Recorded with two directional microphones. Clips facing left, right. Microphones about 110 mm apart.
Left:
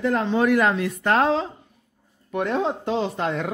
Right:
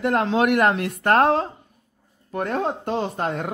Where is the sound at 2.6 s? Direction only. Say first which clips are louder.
Left 1 dB; 50° right (ahead or behind).